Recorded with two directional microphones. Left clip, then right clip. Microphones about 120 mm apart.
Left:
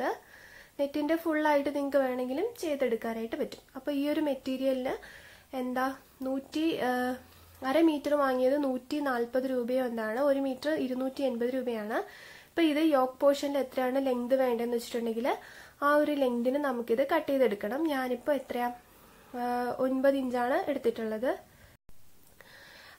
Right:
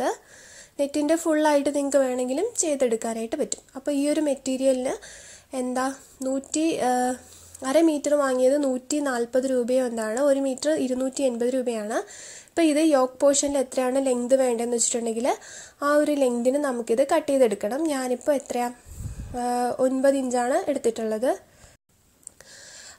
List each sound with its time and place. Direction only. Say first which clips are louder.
0.7 s a woman's voice: right 7 dB; 40° right (ahead or behind)